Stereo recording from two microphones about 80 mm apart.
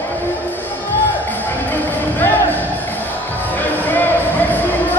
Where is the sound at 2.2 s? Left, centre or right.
Left.